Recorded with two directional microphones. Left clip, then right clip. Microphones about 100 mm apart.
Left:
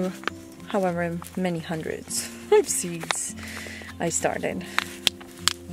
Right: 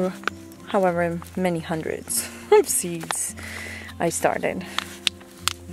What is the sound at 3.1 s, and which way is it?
Music, 30° right (ahead or behind).